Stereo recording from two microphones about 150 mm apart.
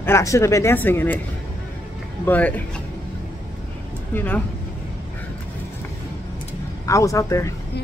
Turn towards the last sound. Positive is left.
turn(degrees=20)  # may be behind; listen again after turning